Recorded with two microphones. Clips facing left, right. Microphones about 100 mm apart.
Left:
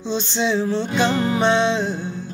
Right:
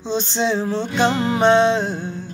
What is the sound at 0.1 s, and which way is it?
Music, 45° right (ahead or behind).